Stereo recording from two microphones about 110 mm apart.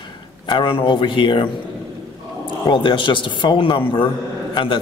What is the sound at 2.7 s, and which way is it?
A man's voice, 45° left (ahead or behind).